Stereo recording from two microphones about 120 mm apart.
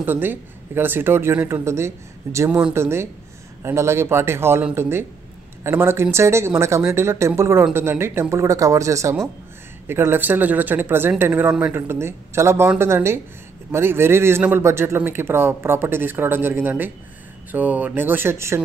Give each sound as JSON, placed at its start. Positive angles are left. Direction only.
{"t": 0.0, "sound": "speech", "side_deg": -15}